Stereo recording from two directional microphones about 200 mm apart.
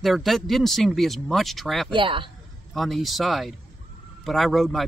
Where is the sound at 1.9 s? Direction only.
25° right (ahead or behind).